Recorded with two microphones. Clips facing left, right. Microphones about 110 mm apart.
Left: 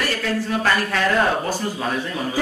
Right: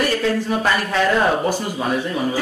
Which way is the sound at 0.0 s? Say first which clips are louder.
Right 4 dB; 20° right (ahead or behind).